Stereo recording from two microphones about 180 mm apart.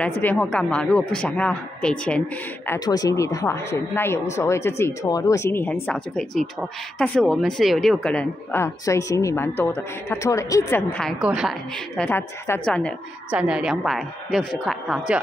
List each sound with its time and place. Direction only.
0.0 s speech: 5° left (ahead or behind)
2.7 s speech: 20° left (ahead or behind); by 11.5 s 5° right (ahead or behind)
12.0 s speech: 10° left (ahead or behind)
13.3 s speech: 5° right (ahead or behind)